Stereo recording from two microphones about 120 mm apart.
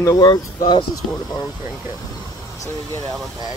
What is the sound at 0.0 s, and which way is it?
Speech, 35° left (ahead or behind).